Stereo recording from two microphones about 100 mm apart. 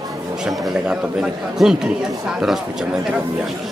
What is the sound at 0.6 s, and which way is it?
Speech, 10° right (ahead or behind).